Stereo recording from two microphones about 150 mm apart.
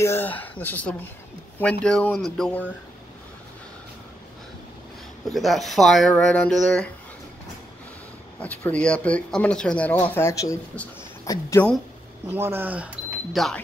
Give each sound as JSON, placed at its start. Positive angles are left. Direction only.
{"t": 0.0, "sound": "speech", "side_deg": 15}
{"t": 5.3, "sound": "speech", "side_deg": 0}
{"t": 8.4, "sound": "speech", "side_deg": 10}
{"t": 12.3, "sound": "speech", "side_deg": -15}